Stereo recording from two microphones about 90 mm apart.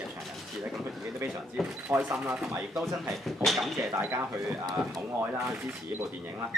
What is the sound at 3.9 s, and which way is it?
Speech, 25° right (ahead or behind).